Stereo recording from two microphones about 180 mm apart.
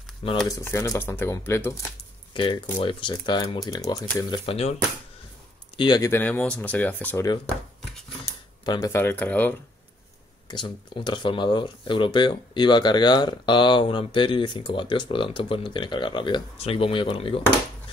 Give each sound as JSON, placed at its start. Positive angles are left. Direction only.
{"t": 0.5, "sound": "speech", "side_deg": 15}
{"t": 2.3, "sound": "speech", "side_deg": 25}
{"t": 4.3, "sound": "speech", "side_deg": 35}
{"t": 5.8, "sound": "speech", "side_deg": 20}
{"t": 8.6, "sound": "speech", "side_deg": 20}
{"t": 10.5, "sound": "speech", "side_deg": 25}